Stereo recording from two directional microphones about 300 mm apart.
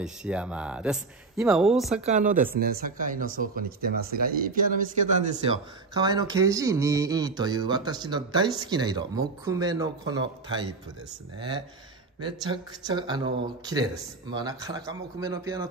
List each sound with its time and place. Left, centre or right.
0.0 s speech: centre
2.0 s speech: right; by 15.7 s centre